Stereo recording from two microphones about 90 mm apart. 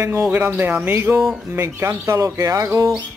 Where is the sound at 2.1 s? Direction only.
40° right (ahead or behind).